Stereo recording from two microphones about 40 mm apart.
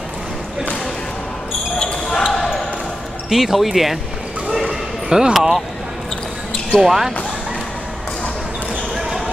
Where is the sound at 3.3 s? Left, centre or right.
Centre.